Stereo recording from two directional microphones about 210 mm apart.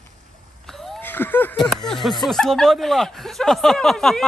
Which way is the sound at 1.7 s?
Centre (ahead or behind).